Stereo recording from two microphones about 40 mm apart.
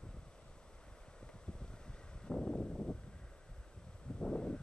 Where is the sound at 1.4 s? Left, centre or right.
Left.